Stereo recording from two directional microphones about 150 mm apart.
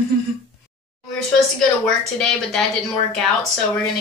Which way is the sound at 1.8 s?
5° left (ahead or behind).